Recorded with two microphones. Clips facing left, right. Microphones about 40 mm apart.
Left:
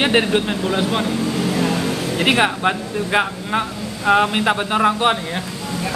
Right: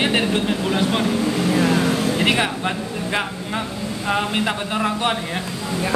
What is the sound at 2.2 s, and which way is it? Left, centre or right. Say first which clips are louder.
Speech: left 3 dB; centre.